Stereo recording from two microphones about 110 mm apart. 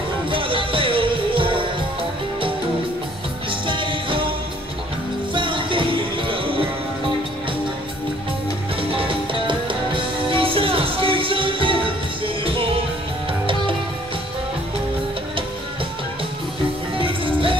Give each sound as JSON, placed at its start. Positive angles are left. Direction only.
{"t": 0.3, "sound": "music", "side_deg": -55}
{"t": 3.4, "sound": "music", "side_deg": -50}
{"t": 5.3, "sound": "music", "side_deg": -50}
{"t": 8.9, "sound": "music", "side_deg": -50}
{"t": 16.9, "sound": "music", "side_deg": -55}